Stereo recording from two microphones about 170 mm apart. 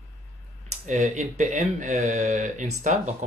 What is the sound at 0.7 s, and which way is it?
Speech, 45° right (ahead or behind).